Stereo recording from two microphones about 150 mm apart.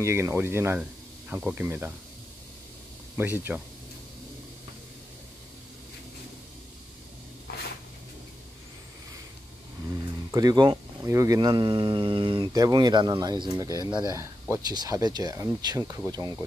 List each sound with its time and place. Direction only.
0.0 s speech: 15° right (ahead or behind)
3.2 s speech: 15° right (ahead or behind)
9.8 s speech: 25° right (ahead or behind)